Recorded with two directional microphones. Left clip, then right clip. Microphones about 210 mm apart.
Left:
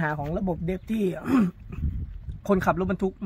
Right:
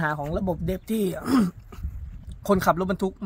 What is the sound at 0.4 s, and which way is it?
Speech, 15° right (ahead or behind).